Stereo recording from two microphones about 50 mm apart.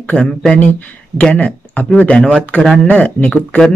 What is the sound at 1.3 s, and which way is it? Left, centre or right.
Speech, left.